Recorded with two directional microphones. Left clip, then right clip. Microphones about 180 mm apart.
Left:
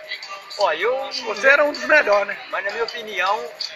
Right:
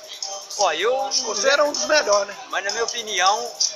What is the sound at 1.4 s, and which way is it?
Speech, 15° left (ahead or behind).